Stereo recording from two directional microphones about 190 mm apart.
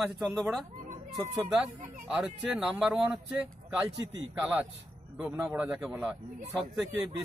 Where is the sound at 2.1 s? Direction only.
5° right (ahead or behind).